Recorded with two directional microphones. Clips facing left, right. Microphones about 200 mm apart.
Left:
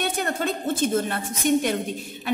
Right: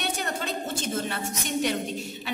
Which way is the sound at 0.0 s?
50° left (ahead or behind).